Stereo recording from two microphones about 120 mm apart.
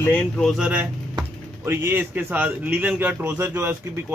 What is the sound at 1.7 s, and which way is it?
A man's voice, 20° right (ahead or behind).